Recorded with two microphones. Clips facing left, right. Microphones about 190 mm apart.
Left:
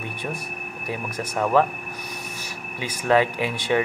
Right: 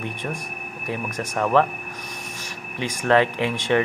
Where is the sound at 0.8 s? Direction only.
10° left (ahead or behind).